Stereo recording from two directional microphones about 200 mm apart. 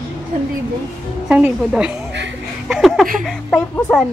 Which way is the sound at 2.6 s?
Centre (ahead or behind).